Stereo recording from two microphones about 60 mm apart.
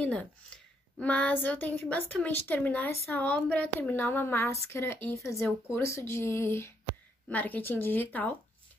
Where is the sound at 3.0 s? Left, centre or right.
Left.